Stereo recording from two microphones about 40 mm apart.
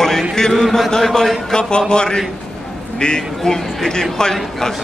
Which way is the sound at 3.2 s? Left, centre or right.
Centre.